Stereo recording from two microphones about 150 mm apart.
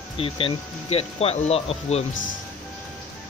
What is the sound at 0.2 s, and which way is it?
Speech, 40° left (ahead or behind).